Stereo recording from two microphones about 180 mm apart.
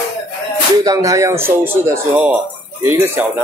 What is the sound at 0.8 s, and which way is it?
Speech, 20° right (ahead or behind).